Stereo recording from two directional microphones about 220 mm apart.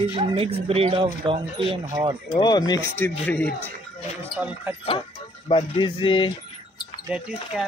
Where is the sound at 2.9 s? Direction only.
10° left (ahead or behind).